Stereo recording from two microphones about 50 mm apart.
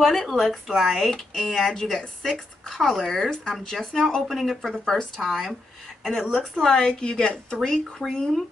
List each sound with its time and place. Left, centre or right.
0.0 s speech: centre
0.4 s speech: centre